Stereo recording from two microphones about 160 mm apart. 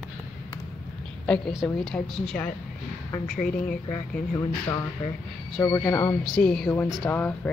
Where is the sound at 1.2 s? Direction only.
5° left (ahead or behind).